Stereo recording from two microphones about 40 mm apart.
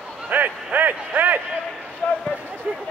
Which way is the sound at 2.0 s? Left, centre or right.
Left.